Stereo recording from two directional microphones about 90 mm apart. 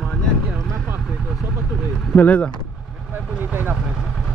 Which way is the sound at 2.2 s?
15° left (ahead or behind).